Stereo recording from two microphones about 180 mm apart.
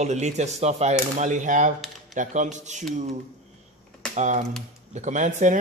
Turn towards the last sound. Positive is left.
turn(degrees=-45)  # may be behind; listen again after turning